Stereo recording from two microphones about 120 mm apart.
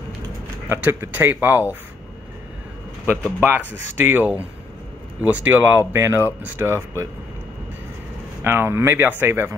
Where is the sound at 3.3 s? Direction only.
20° right (ahead or behind).